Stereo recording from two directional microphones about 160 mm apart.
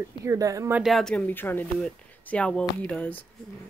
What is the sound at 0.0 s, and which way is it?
Speech, 20° right (ahead or behind).